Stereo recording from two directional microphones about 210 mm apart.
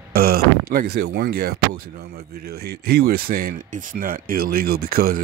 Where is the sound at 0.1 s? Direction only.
45° right (ahead or behind).